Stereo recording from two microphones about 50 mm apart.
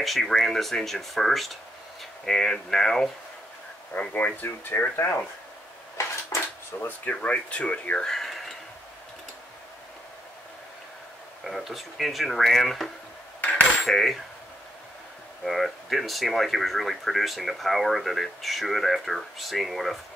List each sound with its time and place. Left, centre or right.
0.0 s speech: centre
4.0 s speech: left
6.0 s cutlery: left
6.7 s speech: centre
7.1 s speech: left
8.0 s a sound: centre
11.4 s speech: centre
15.4 s speech: centre